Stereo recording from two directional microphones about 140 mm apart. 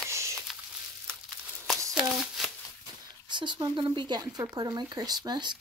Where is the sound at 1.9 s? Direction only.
5° right (ahead or behind).